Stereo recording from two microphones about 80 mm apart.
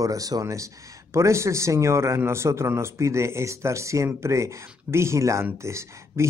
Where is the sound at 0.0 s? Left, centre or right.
Right.